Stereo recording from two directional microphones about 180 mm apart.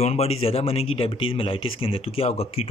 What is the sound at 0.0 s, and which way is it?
Speech, 35° left (ahead or behind).